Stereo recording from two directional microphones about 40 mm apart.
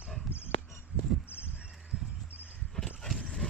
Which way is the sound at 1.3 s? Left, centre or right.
Right.